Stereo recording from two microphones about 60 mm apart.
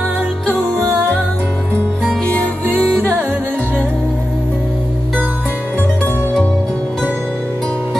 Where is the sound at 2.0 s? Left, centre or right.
Centre.